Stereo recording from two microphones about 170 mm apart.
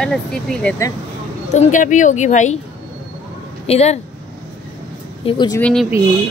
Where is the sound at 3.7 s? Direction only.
40° left (ahead or behind).